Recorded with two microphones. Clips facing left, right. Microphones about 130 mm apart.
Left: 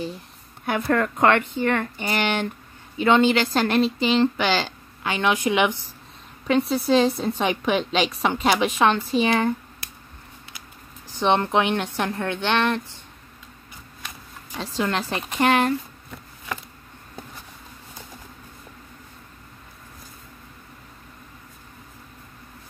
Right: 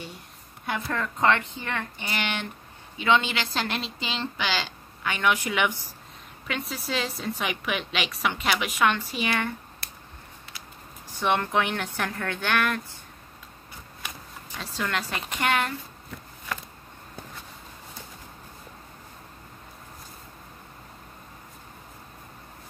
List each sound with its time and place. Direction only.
0.7 s speech: 60° left (ahead or behind)
5.0 s a woman's voice: 30° left (ahead or behind)
11.1 s a woman's voice: 25° left (ahead or behind)
14.6 s a woman's voice: 30° left (ahead or behind)